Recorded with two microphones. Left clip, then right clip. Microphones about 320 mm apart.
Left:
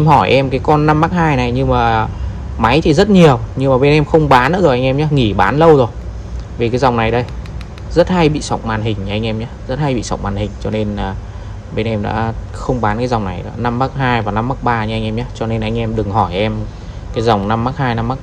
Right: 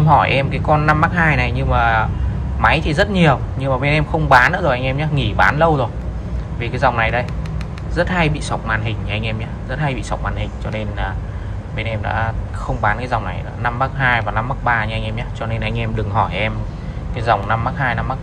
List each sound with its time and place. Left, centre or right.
0.2 s speech: centre